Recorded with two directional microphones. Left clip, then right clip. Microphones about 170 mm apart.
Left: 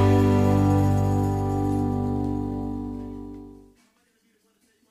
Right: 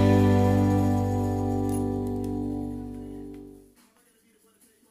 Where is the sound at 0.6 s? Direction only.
20° left (ahead or behind).